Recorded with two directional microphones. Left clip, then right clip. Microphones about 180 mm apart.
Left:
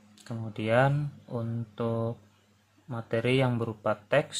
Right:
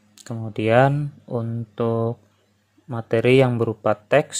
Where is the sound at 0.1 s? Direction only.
35° right (ahead or behind).